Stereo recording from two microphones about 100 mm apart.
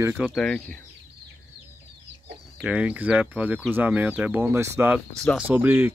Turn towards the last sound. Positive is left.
turn(degrees=-20)  # may be behind; listen again after turning